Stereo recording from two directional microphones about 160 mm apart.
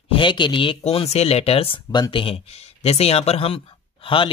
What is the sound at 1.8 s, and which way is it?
Speech, 25° left (ahead or behind).